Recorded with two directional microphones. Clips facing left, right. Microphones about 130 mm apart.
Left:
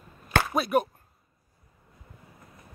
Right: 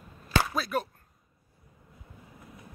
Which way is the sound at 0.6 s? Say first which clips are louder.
Left 6 dB; 20° left (ahead or behind).